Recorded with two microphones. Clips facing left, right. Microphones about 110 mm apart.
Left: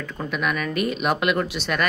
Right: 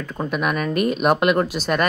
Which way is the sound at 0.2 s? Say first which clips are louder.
Right 3 dB; 45° right (ahead or behind).